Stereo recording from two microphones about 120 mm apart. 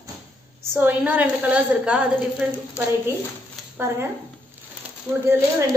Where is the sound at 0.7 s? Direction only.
15° right (ahead or behind).